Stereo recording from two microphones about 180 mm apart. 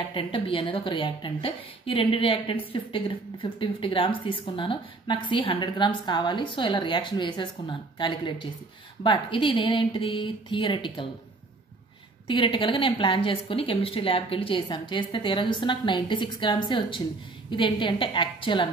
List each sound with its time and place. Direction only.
0.1 s a woman's voice: 30° left (ahead or behind)
12.3 s a woman's voice: 30° left (ahead or behind)